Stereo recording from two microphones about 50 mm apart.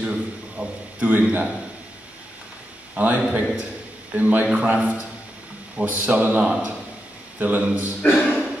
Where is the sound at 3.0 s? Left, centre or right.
Right.